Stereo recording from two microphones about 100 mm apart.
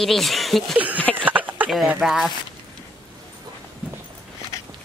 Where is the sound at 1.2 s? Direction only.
15° right (ahead or behind).